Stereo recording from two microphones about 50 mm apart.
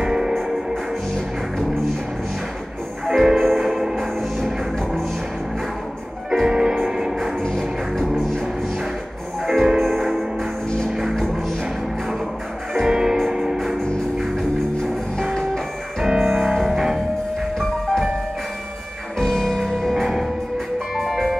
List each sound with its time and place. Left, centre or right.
0.0 s music: centre
3.1 s music: centre
6.4 s music: centre
7.5 s music: centre
9.5 s music: centre
12.7 s music: centre
13.6 s music: centre
16.0 s music: centre
17.6 s music: centre
19.1 s music: centre